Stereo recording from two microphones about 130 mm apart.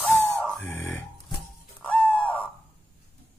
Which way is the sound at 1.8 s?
10° left (ahead or behind).